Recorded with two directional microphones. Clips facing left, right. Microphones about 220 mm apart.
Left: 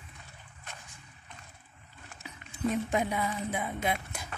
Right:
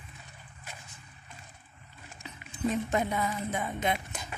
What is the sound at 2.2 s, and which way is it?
Music, 10° left (ahead or behind).